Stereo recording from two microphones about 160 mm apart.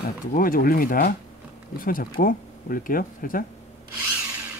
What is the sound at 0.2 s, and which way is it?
Speech, 60° left (ahead or behind).